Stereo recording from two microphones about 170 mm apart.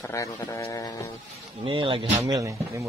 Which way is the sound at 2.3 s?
20° right (ahead or behind).